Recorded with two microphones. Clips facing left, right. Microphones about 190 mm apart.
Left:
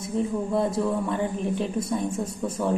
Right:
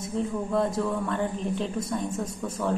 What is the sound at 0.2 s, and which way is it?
A woman's voice, 15° left (ahead or behind).